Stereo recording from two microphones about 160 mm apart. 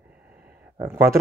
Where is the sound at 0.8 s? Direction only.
15° right (ahead or behind).